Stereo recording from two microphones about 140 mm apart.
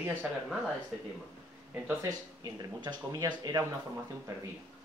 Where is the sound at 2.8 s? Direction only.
30° right (ahead or behind).